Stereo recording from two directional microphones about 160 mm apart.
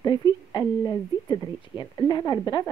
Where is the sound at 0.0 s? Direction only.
25° left (ahead or behind).